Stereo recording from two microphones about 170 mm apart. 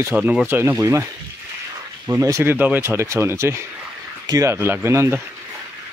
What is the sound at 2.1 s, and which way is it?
Speech, 15° right (ahead or behind).